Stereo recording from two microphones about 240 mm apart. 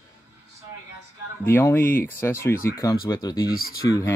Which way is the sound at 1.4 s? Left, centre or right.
Centre.